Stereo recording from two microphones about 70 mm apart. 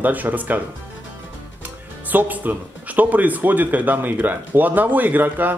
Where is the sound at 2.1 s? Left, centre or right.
Right.